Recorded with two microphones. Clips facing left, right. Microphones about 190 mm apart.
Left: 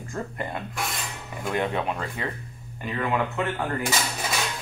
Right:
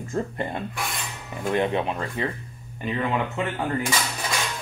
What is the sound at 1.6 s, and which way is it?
Speech, 20° right (ahead or behind).